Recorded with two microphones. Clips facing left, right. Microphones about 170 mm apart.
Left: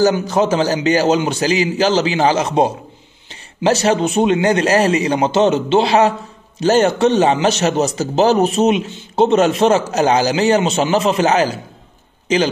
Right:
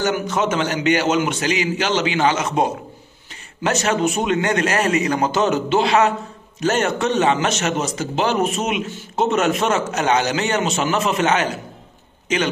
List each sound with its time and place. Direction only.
0.3 s a man's voice: 35° left (ahead or behind)